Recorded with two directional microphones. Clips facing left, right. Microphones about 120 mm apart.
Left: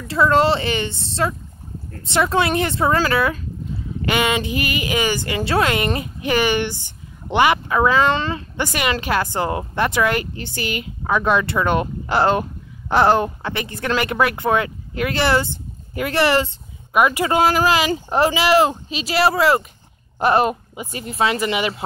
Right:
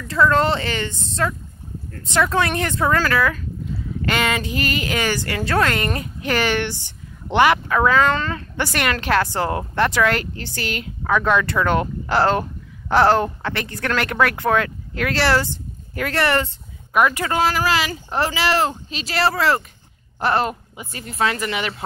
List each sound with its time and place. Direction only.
0.1 s speech: 15° left (ahead or behind)